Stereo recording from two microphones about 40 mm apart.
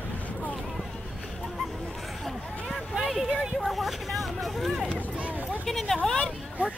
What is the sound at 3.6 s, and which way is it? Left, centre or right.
Vehicle, centre.